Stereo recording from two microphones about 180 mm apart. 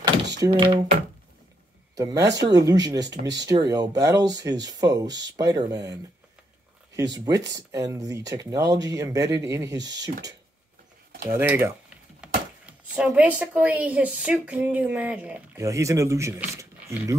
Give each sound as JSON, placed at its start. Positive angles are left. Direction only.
{"t": 0.5, "sound": "speech", "side_deg": -25}
{"t": 2.0, "sound": "speech", "side_deg": -20}
{"t": 7.2, "sound": "a woman's voice", "side_deg": -20}
{"t": 11.2, "sound": "a woman's voice", "side_deg": -15}
{"t": 12.2, "sound": "wood", "side_deg": -5}
{"t": 12.6, "sound": "a woman's voice", "side_deg": -5}